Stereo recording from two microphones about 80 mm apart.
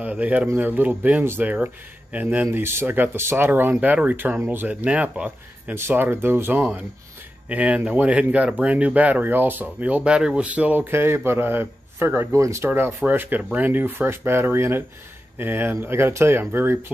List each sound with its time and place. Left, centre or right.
0.0 s a man's voice: centre
2.4 s speech: right
12.3 s speech: right
12.6 s a man's voice: right